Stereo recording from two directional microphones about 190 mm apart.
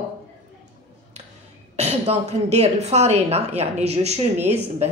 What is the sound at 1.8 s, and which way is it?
Speech, 35° right (ahead or behind).